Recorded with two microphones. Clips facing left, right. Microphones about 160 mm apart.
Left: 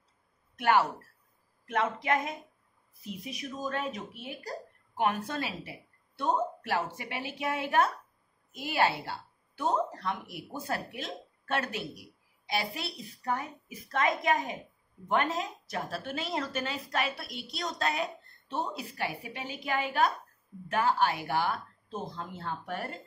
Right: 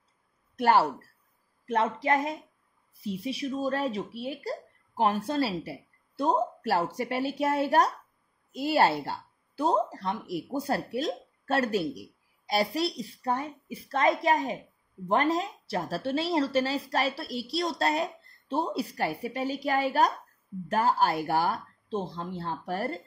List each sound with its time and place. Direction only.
0.6 s speech: 35° right (ahead or behind)